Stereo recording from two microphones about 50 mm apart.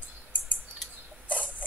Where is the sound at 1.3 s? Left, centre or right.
Left.